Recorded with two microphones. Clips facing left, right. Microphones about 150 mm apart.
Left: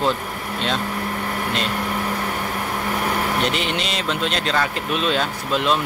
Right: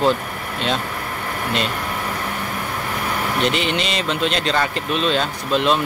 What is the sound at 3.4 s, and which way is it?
Speech, centre (ahead or behind).